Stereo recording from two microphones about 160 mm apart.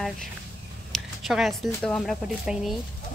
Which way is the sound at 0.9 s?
Centre (ahead or behind).